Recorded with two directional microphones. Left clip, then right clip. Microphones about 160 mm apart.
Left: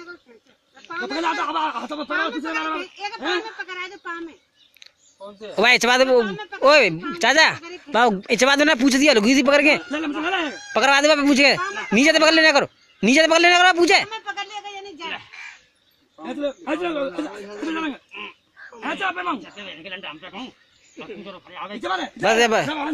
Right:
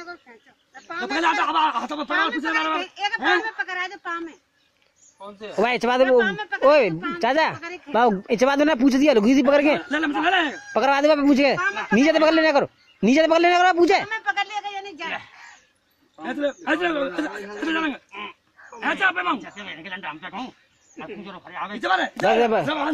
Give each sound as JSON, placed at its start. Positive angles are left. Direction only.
{"t": 1.0, "sound": "speech", "side_deg": -5}
{"t": 1.6, "sound": "a man's voice", "side_deg": -20}
{"t": 5.5, "sound": "speech", "side_deg": 0}
{"t": 11.6, "sound": "speech", "side_deg": -25}
{"t": 11.9, "sound": "speech", "side_deg": -5}
{"t": 14.5, "sound": "a sound", "side_deg": -20}
{"t": 16.2, "sound": "speech", "side_deg": 0}
{"t": 16.6, "sound": "speech", "side_deg": -15}
{"t": 18.2, "sound": "a sound", "side_deg": -10}
{"t": 19.3, "sound": "speech", "side_deg": -5}
{"t": 22.0, "sound": "speech", "side_deg": 0}